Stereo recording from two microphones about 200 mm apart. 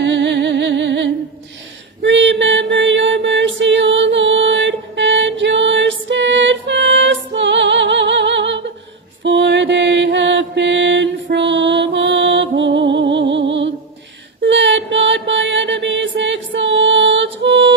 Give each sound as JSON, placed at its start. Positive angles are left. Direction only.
{"t": 0.0, "sound": "music", "side_deg": -60}
{"t": 9.2, "sound": "mantra", "side_deg": -65}
{"t": 11.2, "sound": "music", "side_deg": -60}
{"t": 14.4, "sound": "mantra", "side_deg": -60}